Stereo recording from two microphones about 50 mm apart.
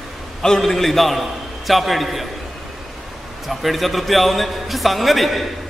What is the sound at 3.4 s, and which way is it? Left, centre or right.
A man's voice, centre.